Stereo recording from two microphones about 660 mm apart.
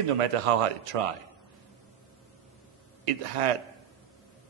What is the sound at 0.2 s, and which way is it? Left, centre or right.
Speech, right.